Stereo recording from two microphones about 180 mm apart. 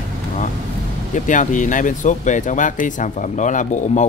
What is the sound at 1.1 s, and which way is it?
Speech, 45° left (ahead or behind).